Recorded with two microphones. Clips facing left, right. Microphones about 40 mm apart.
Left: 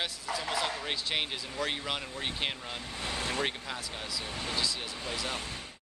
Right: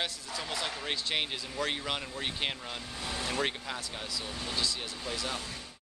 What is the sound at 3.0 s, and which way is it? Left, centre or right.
Vehicle, left.